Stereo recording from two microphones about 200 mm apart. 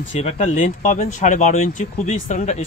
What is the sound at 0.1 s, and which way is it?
Speech, 35° left (ahead or behind).